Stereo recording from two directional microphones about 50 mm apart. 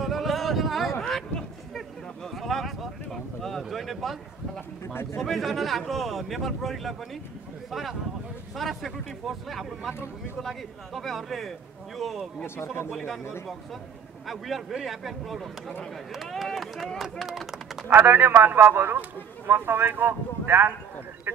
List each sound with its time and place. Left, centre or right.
0.0 s a sound: centre
2.3 s a sound: centre
4.8 s speech: left
5.2 s speech: centre
8.5 s speech: centre
14.2 s speech: centre
17.8 s speech: right